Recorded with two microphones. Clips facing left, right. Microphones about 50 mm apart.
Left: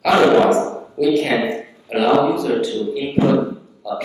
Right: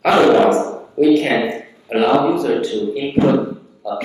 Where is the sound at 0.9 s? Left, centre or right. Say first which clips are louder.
Right 3 dB; right.